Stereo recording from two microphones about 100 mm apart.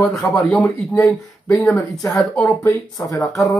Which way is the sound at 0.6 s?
15° left (ahead or behind).